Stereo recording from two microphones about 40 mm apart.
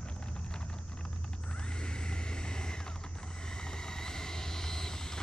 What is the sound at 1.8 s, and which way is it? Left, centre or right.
Vehicle, left.